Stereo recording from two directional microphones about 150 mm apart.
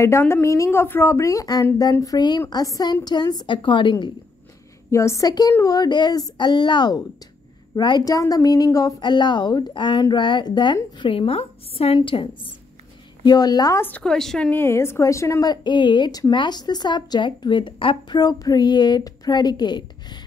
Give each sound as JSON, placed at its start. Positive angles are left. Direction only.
{"t": 0.0, "sound": "a woman's voice", "side_deg": 15}
{"t": 4.9, "sound": "a woman's voice", "side_deg": 20}
{"t": 13.8, "sound": "a woman's voice", "side_deg": 10}